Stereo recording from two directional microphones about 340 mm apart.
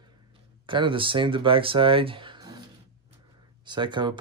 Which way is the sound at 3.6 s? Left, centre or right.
Centre.